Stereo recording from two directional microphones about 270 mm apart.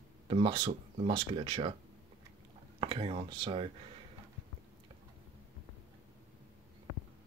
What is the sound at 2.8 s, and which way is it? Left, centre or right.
Speech, centre.